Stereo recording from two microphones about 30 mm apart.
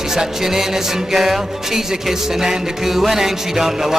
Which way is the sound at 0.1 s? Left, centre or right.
Centre.